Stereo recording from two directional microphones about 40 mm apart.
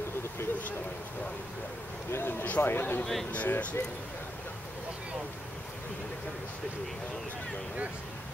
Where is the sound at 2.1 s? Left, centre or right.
Left.